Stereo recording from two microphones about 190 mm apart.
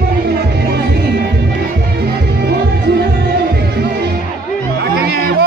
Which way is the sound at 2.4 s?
60° right (ahead or behind).